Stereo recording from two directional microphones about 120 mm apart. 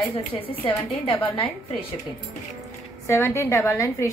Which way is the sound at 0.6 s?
45° left (ahead or behind).